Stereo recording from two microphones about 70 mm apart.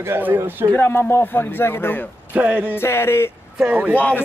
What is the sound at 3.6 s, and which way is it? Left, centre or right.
Speech, right.